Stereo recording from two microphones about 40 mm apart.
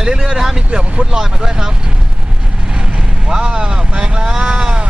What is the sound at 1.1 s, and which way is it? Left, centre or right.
Speech, centre.